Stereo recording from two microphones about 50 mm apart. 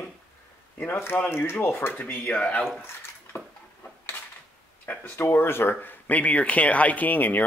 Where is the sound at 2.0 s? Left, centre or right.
Left.